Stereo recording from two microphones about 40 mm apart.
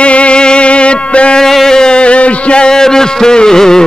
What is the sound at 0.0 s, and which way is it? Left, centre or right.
Music, left.